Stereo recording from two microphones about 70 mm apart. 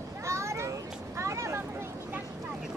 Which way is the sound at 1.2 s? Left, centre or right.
Right.